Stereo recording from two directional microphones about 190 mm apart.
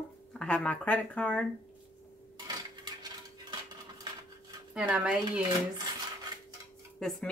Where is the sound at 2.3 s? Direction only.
20° right (ahead or behind).